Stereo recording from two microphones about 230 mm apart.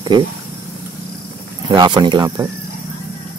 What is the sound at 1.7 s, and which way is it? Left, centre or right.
Speech, centre.